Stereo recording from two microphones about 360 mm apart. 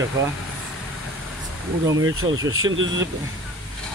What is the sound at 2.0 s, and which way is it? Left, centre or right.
Speech, right.